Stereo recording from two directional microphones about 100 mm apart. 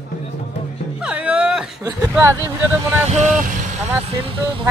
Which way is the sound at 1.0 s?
10° right (ahead or behind).